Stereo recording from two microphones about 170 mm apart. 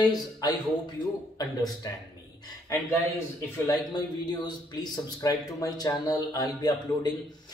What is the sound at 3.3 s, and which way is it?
Speech, 20° left (ahead or behind).